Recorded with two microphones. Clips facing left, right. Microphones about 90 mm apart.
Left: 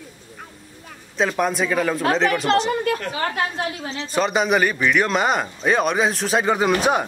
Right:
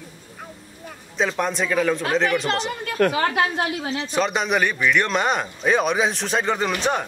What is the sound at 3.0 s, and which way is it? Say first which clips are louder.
Speech: right 5 dB; 65° right (ahead or behind).